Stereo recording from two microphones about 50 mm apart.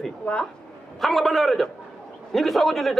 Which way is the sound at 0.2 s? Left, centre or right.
Left.